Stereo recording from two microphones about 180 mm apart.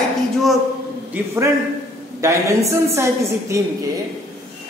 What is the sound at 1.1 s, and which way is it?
A man's voice, 15° right (ahead or behind).